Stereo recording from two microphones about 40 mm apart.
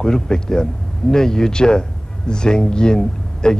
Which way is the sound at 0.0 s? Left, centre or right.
Centre.